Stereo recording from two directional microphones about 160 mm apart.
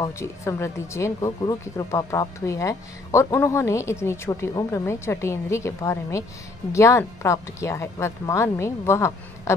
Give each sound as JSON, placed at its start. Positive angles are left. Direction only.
{"t": 0.0, "sound": "speech", "side_deg": 15}